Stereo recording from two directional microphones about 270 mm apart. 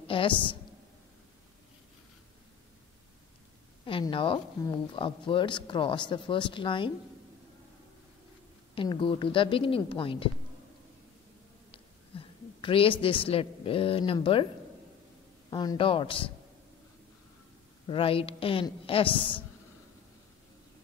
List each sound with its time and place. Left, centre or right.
0.0 s a woman's voice: centre
3.8 s a woman's voice: centre
8.7 s speech: centre
11.7 s a woman's voice: centre
15.5 s a woman's voice: centre
17.8 s speech: centre